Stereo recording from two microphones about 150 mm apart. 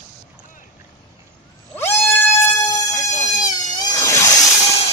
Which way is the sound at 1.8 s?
15° left (ahead or behind).